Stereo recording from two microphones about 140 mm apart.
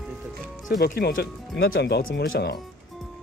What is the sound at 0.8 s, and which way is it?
Speech, 90° left.